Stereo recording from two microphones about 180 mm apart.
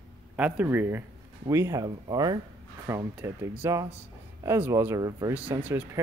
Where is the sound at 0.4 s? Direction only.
10° right (ahead or behind).